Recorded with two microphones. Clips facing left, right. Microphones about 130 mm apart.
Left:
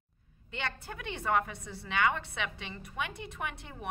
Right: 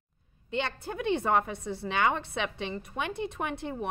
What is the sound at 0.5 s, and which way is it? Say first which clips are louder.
A woman's voice: right 7 dB; 25° right (ahead or behind).